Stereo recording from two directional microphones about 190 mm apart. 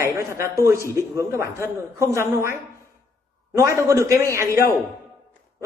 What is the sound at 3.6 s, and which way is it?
Speech, 15° right (ahead or behind).